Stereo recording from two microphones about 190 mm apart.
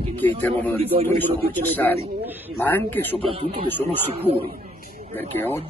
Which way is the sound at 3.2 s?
30° right (ahead or behind).